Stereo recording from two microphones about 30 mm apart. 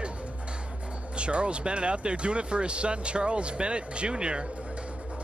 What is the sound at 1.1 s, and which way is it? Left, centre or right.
Speech, right.